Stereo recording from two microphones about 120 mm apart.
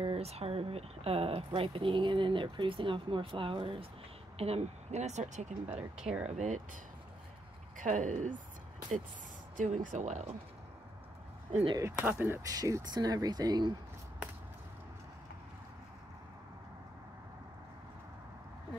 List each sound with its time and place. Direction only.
0.0 s speech: 55° right (ahead or behind)
4.4 s speech: 60° right (ahead or behind)
5.7 s speech: 10° right (ahead or behind)
6.3 s speech: 85° right
9.6 s speech: 90° right
11.7 s speech: 20° right (ahead or behind)